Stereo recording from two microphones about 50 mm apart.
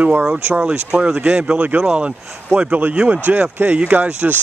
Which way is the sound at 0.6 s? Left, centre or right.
Right.